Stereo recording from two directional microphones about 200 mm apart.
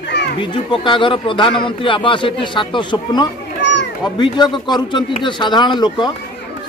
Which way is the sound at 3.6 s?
65° left (ahead or behind).